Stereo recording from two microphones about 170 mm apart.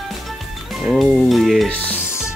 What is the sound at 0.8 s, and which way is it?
Music, centre (ahead or behind).